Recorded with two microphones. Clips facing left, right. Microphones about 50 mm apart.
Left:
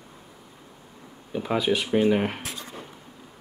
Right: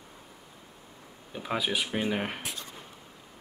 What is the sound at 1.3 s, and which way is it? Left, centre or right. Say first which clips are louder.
Speech: left 6 dB; centre.